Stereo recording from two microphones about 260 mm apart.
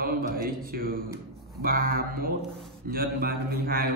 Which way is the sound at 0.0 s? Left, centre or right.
Right.